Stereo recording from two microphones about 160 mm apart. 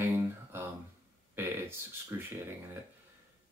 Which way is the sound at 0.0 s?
15° right (ahead or behind).